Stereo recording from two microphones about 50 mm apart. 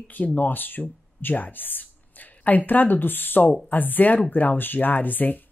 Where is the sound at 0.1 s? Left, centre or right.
Left.